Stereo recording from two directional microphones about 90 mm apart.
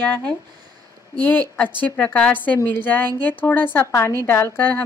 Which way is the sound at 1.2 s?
20° left (ahead or behind).